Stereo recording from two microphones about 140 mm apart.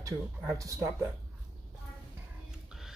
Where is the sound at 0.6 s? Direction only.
25° right (ahead or behind).